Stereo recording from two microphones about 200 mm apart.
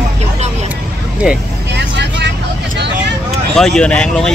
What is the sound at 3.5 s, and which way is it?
Speech, centre (ahead or behind).